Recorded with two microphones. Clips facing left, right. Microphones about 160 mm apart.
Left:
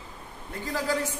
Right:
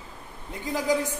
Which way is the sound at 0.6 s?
15° right (ahead or behind).